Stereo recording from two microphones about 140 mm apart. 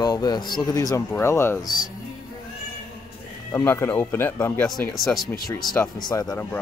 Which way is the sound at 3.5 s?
20° left (ahead or behind).